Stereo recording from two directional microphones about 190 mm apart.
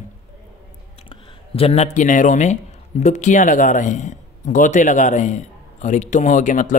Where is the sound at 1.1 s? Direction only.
30° left (ahead or behind).